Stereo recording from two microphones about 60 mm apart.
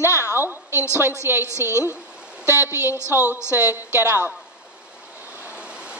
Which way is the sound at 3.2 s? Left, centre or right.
Left.